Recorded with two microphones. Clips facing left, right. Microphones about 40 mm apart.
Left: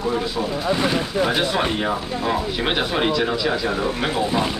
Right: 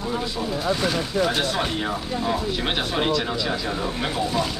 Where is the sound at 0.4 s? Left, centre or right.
Centre.